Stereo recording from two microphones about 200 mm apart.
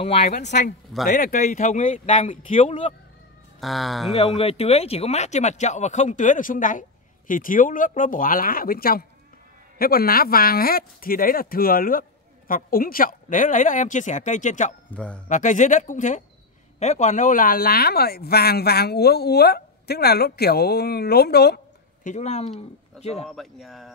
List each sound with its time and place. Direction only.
0.0 s speech: 30° left (ahead or behind)
3.6 s speech: centre (ahead or behind)
4.4 s speech: 30° left (ahead or behind)
14.9 s speech: 5° left (ahead or behind)
15.2 s speech: 40° left (ahead or behind)
22.0 s speech: 35° left (ahead or behind)
23.2 s speech: centre (ahead or behind)